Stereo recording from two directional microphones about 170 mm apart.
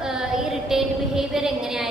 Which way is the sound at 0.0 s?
5° right (ahead or behind).